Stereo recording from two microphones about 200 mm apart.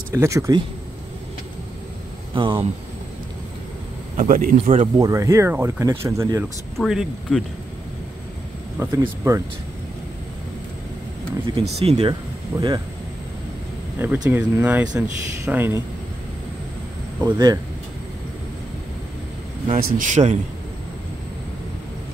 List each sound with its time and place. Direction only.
0.1 s speech: 15° right (ahead or behind)
2.3 s speech: 25° right (ahead or behind)
4.2 s a man's voice: 40° right (ahead or behind)
4.9 s speech: 15° right (ahead or behind)
6.8 s speech: centre (ahead or behind)
8.7 s speech: 15° right (ahead or behind)
11.4 s speech: 30° right (ahead or behind)
13.9 s speech: 10° right (ahead or behind)
17.2 s speech: 20° right (ahead or behind)
19.7 s a man's voice: 40° right (ahead or behind)